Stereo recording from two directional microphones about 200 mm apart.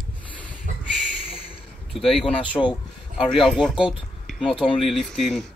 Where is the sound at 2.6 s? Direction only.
15° left (ahead or behind).